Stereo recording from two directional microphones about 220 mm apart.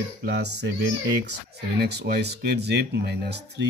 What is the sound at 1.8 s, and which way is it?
Speech, 50° right (ahead or behind).